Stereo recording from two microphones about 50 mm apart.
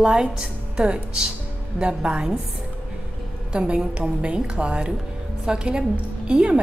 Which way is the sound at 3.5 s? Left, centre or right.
Centre.